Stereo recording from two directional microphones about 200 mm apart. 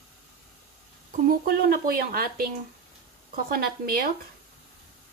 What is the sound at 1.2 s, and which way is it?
A woman's voice, 50° right (ahead or behind).